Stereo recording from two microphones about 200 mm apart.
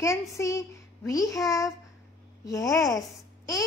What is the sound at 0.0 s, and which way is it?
A woman's voice, 15° left (ahead or behind).